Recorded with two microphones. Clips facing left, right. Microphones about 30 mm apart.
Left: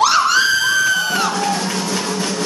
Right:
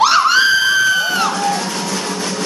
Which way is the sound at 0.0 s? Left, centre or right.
Right.